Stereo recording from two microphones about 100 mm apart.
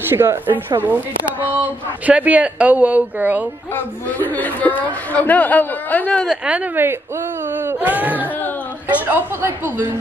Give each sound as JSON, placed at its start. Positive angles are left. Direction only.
{"t": 0.1, "sound": "speech", "side_deg": -25}
{"t": 3.7, "sound": "a man's voice", "side_deg": 15}
{"t": 6.2, "sound": "a woman's voice", "side_deg": -10}